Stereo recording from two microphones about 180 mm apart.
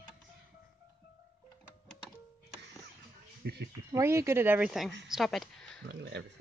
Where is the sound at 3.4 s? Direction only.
70° right (ahead or behind).